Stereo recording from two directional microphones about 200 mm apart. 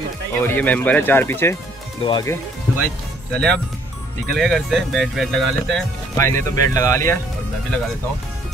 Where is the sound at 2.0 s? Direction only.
20° left (ahead or behind).